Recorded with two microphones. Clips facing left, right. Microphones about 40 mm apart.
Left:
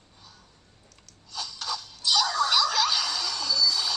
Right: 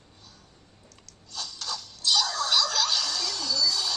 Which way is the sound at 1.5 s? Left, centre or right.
Left.